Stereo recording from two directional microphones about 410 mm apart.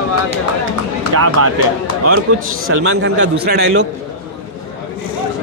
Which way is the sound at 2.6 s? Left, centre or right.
Right.